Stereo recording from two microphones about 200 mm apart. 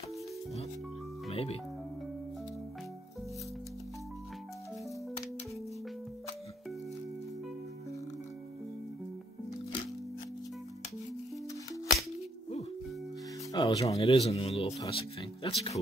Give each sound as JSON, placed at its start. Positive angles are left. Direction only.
{"t": 1.3, "sound": "speech", "side_deg": 30}
{"t": 13.5, "sound": "speech", "side_deg": 20}
{"t": 14.0, "sound": "speech", "side_deg": 30}